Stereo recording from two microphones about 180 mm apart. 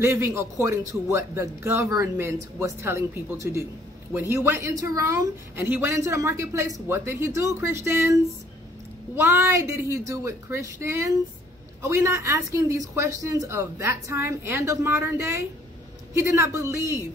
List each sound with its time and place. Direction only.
0.0 s a woman's voice: 15° right (ahead or behind)